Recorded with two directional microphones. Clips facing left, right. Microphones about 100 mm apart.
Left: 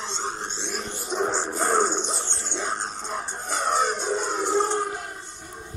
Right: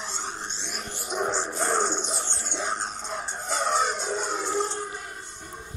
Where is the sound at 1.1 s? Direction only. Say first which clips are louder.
Left 2 dB; 5° right (ahead or behind).